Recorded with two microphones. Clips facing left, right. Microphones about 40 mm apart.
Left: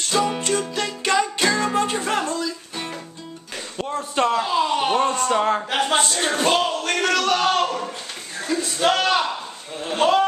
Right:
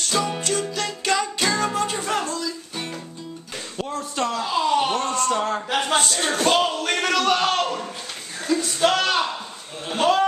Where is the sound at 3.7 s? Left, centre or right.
Centre.